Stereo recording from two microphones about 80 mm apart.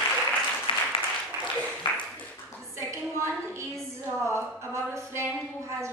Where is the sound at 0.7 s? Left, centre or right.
Left.